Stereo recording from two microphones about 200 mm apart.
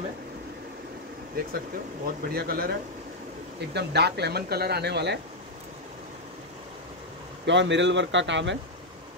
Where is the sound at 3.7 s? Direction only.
55° right (ahead or behind).